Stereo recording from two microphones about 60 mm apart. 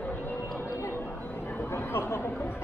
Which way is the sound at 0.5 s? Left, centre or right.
Left.